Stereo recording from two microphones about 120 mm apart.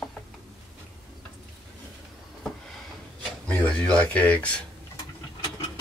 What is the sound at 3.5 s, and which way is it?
Speech, 10° left (ahead or behind).